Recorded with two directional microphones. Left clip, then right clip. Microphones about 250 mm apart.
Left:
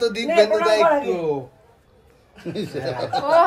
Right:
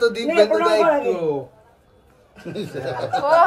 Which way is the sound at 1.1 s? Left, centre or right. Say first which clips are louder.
Right 1 dB; left.